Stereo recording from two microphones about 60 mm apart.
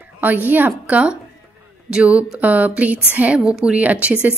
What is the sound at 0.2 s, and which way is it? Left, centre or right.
Speech, right.